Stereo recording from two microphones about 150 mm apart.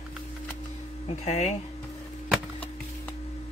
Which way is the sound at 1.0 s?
50° left (ahead or behind).